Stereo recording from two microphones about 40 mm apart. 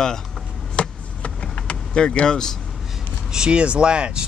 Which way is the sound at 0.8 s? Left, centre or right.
Left.